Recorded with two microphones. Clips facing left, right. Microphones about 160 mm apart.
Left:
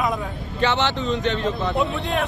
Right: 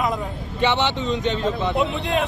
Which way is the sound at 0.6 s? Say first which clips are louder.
Right 1 dB; 20° right (ahead or behind).